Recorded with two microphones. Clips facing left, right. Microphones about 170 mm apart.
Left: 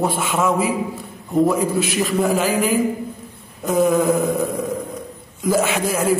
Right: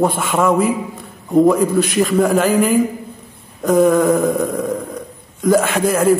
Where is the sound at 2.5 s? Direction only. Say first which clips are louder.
Right 4 dB; 50° right (ahead or behind).